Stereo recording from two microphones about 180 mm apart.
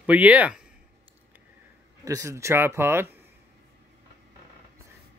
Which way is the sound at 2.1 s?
15° right (ahead or behind).